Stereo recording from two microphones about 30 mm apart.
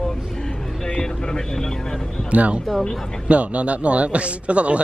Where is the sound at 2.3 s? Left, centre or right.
Right.